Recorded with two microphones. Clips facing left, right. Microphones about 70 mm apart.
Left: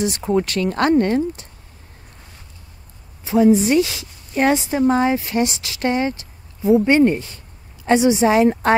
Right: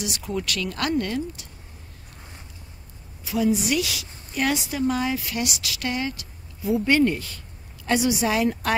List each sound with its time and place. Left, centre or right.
0.0 s a woman's voice: left
3.3 s a woman's voice: left